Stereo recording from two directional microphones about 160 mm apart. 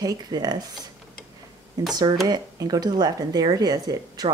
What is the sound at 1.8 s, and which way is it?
Speech, 25° right (ahead or behind).